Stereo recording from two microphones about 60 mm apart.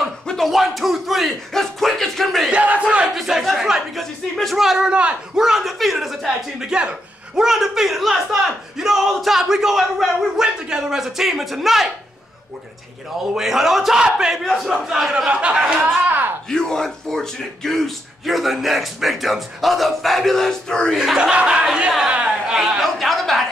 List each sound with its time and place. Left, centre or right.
0.3 s speech: centre
2.5 s battle cry: right
3.2 s speech: centre
3.9 s speech: centre
13.3 s speech: centre
14.4 s speech: centre
15.9 s speech: right
16.4 s speech: centre
20.9 s speech: centre
21.2 s speech: centre
22.1 s a sound: centre
22.8 s a sound: centre